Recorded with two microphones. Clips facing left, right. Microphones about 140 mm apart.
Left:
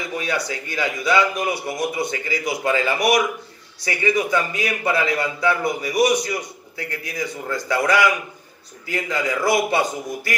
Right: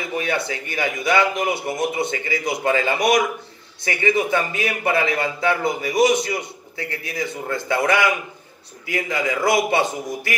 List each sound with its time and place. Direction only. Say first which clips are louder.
0.3 s a man's voice: right 1 dB; 25° right (ahead or behind)
9.1 s a man's voice: even; 20° right (ahead or behind)